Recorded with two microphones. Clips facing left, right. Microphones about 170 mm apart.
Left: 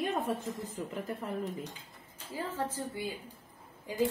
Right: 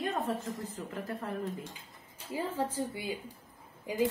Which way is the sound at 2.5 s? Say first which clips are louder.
Right 2 dB; 10° right (ahead or behind).